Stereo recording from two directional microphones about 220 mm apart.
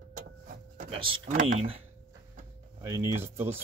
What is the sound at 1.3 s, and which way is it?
Speech, 35° right (ahead or behind).